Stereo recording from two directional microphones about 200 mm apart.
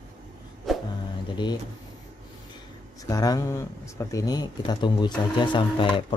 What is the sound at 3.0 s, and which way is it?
Speech, 20° left (ahead or behind).